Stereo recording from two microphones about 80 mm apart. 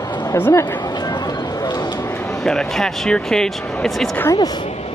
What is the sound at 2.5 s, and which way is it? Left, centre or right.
Speech, centre.